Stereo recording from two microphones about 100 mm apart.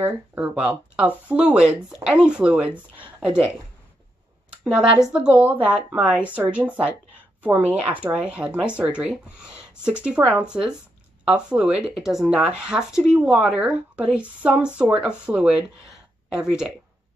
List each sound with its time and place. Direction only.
0.0 s speech: 20° right (ahead or behind)
4.5 s speech: 5° right (ahead or behind)